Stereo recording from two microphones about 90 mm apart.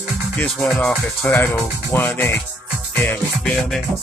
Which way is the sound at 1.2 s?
20° left (ahead or behind).